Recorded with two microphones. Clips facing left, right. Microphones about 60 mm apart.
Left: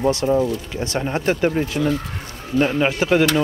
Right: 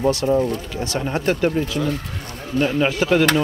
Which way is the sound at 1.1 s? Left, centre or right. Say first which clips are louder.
Even; left.